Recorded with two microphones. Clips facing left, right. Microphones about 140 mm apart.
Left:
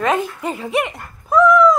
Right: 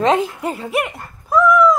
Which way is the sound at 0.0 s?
20° right (ahead or behind).